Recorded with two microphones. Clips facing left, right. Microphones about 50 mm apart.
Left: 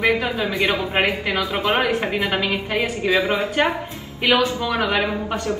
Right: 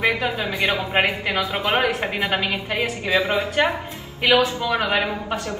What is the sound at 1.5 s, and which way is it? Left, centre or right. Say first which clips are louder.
Speech: left 1 dB; right.